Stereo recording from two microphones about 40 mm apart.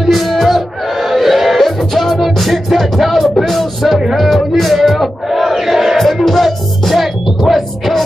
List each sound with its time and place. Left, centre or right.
0.0 s music: centre
4.0 s battle cry: centre
5.9 s music: centre